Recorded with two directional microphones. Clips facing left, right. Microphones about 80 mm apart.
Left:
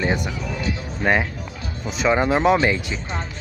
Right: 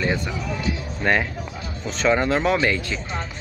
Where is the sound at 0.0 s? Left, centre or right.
Centre.